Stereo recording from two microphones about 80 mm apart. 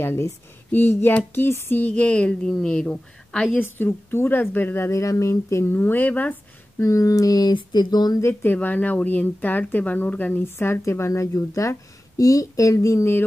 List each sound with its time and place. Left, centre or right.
0.0 s speech: left
1.8 s speech: centre
3.5 s speech: left
6.8 s speech: left
7.5 s speech: left
8.2 s speech: left
8.5 s speech: centre; by 13.2 s left